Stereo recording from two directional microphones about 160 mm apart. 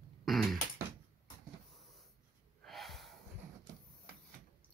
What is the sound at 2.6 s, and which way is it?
Snort, centre (ahead or behind).